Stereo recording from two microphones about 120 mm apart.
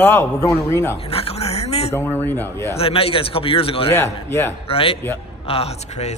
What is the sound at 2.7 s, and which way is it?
A man's voice, 50° left (ahead or behind).